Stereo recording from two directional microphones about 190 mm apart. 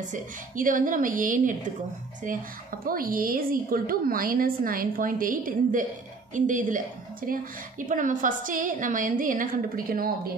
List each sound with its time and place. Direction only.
0.1 s a woman's voice: 45° right (ahead or behind)
2.9 s a woman's voice: 50° right (ahead or behind)